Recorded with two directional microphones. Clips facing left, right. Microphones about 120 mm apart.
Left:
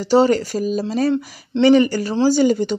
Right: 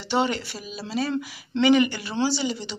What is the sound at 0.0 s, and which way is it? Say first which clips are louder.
Speech: left 10 dB; 40° left (ahead or behind).